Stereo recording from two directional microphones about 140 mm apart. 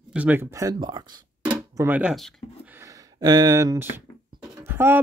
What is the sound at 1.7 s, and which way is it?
Speech, 10° right (ahead or behind).